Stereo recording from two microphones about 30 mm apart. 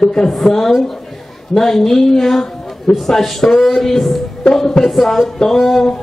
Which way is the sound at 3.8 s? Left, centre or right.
Centre.